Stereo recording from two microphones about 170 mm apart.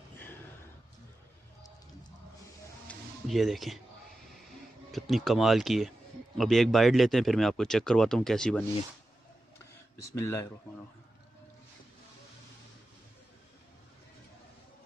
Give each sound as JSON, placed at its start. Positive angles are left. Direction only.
{"t": 2.9, "sound": "music", "side_deg": 0}
{"t": 4.9, "sound": "speech", "side_deg": 0}
{"t": 10.1, "sound": "speech", "side_deg": 20}